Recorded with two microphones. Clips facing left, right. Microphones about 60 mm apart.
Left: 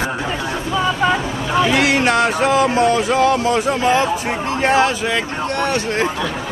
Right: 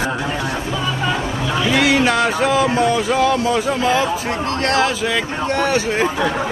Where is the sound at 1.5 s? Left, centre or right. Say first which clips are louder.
Left 1 dB; centre.